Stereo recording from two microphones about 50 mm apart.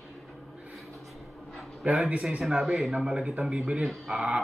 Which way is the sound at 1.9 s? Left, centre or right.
Right.